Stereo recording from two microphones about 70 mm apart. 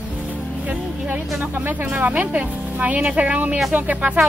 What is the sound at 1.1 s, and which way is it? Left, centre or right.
Speech, right.